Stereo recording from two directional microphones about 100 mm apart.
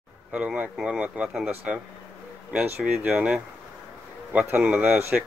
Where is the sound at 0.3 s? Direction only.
10° right (ahead or behind).